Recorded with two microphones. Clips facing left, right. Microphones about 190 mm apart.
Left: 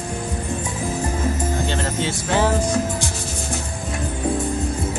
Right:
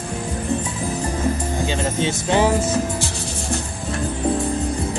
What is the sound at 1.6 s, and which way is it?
Speech, 15° right (ahead or behind).